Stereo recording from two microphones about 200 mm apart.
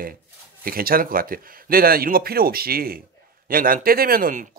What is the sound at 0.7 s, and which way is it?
A man's voice, 45° right (ahead or behind).